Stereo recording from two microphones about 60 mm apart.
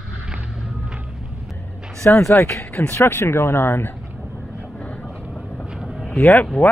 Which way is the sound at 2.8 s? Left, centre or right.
Left.